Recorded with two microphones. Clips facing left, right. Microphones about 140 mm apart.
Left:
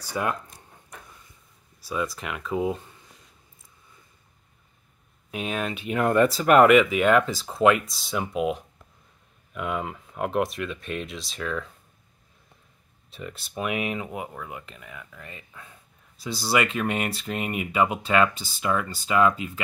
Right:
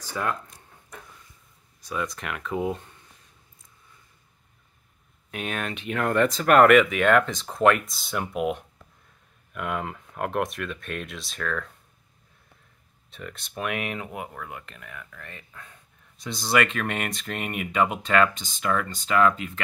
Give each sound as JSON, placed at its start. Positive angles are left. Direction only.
{"t": 0.0, "sound": "speech", "side_deg": 15}
{"t": 1.9, "sound": "speech", "side_deg": 5}
{"t": 5.3, "sound": "speech", "side_deg": 0}
{"t": 13.1, "sound": "speech", "side_deg": 5}